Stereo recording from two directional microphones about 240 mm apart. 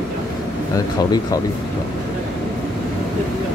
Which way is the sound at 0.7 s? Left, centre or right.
Centre.